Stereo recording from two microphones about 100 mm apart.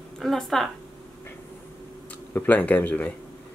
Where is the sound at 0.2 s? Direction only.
5° left (ahead or behind).